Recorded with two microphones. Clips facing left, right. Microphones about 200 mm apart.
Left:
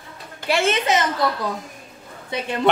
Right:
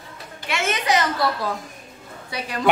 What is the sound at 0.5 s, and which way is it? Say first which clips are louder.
Speech: left 3 dB; 30° left (ahead or behind).